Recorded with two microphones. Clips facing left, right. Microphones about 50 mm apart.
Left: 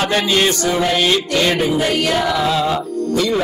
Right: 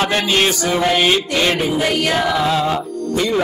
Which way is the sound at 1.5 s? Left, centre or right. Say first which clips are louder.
Left 1 dB; centre.